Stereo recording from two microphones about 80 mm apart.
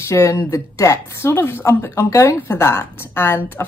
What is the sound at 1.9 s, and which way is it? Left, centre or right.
Speech, left.